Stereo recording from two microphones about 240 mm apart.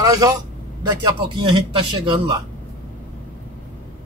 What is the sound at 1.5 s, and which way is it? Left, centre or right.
Speech, centre.